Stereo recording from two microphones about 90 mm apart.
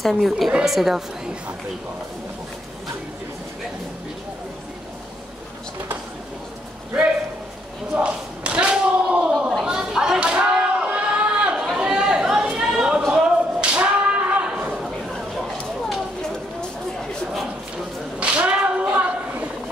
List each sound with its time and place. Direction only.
0.0 s a woman's voice: centre (ahead or behind)
7.9 s slam: 10° right (ahead or behind)
9.5 s a sound: 5° right (ahead or behind)
11.5 s chatter: centre (ahead or behind)
13.1 s whip: 10° right (ahead or behind)
18.2 s a sound: 15° right (ahead or behind)